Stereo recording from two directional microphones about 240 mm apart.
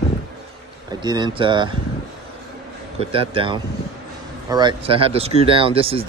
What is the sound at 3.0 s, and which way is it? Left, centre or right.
Speech, right.